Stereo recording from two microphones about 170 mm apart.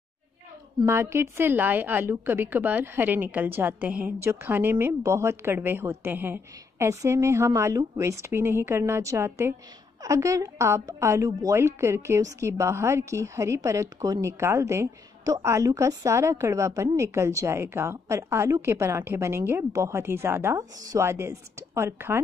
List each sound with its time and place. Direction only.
0.8 s a woman's voice: 15° right (ahead or behind)